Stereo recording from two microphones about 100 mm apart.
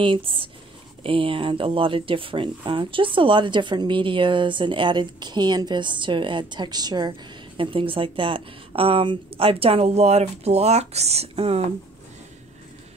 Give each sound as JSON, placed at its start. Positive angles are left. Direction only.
{"t": 0.0, "sound": "speech", "side_deg": -60}
{"t": 7.1, "sound": "a woman's voice", "side_deg": -60}